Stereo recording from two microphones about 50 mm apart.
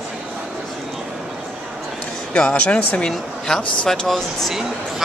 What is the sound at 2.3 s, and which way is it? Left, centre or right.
Speech, centre.